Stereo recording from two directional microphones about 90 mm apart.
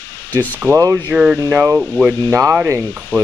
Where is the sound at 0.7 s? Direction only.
40° right (ahead or behind).